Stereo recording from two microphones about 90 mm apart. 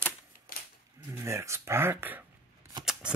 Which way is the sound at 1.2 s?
30° right (ahead or behind).